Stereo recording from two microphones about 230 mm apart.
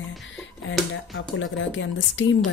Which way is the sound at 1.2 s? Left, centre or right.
Left.